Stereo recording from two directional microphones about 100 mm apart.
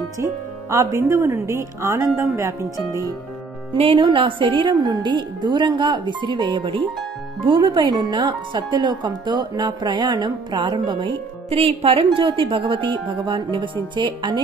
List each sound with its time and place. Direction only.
0.2 s speech: 30° right (ahead or behind)
3.7 s speech: 65° right (ahead or behind)
11.5 s a woman's voice: 75° right (ahead or behind); by 14.4 s 50° right (ahead or behind)